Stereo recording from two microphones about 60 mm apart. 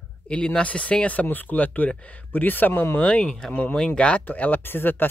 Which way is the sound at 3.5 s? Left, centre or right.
Left.